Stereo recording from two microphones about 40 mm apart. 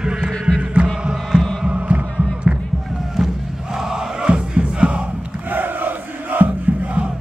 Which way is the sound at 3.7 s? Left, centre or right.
Centre.